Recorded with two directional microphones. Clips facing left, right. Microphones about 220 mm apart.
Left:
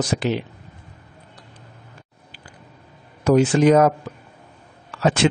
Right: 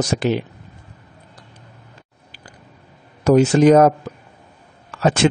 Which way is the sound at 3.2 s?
40° right (ahead or behind).